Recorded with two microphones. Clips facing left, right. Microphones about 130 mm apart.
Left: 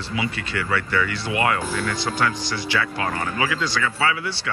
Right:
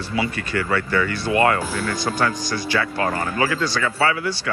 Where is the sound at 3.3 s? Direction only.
35° right (ahead or behind).